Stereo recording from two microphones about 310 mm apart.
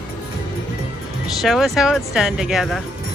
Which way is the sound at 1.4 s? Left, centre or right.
Centre.